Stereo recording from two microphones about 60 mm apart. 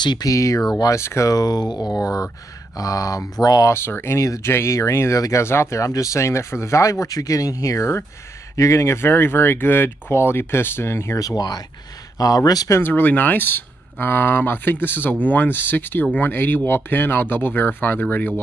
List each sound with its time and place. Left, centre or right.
0.2 s speech: left
0.9 s speech: left
1.3 s speech: left
2.0 s speech: left
3.7 s speech: left
4.2 s speech: left
11.1 s speech: left
12.8 s speech: left